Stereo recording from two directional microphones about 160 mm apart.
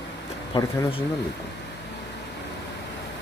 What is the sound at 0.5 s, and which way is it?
Speech, 35° left (ahead or behind).